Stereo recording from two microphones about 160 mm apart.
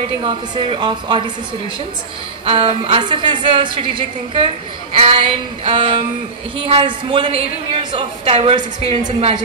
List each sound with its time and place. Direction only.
0.2 s a woman's voice: 30° right (ahead or behind)
2.4 s a woman's voice: 35° right (ahead or behind)